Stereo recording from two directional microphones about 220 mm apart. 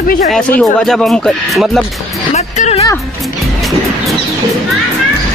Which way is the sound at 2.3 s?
30° left (ahead or behind).